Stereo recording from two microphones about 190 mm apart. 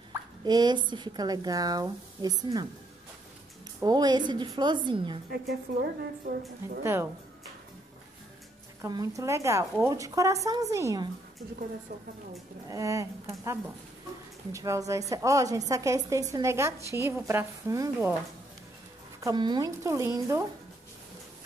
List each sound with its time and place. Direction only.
0.4 s speech: 20° right (ahead or behind)
3.8 s speech: 20° right (ahead or behind)
5.3 s a woman's voice: 55° right (ahead or behind)
6.8 s a woman's voice: 15° right (ahead or behind)
8.8 s a woman's voice: 20° right (ahead or behind)
12.6 s a woman's voice: 15° right (ahead or behind)
19.2 s a woman's voice: 25° right (ahead or behind)